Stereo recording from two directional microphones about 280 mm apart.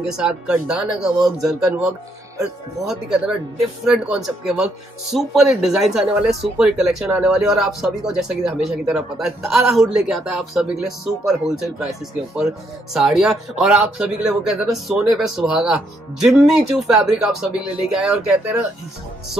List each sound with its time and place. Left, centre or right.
0.2 s speech: centre